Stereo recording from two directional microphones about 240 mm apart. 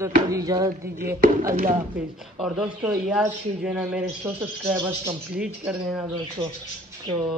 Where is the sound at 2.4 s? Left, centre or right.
Centre.